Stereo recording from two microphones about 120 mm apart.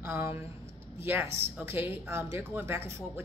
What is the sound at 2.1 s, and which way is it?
Speech, 20° right (ahead or behind).